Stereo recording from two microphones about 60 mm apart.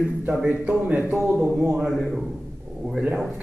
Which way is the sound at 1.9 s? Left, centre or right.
Centre.